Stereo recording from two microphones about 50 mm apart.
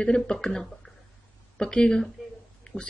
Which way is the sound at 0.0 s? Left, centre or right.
Centre.